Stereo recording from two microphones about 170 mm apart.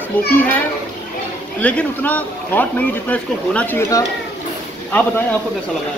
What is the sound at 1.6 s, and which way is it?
A man's voice, 10° left (ahead or behind).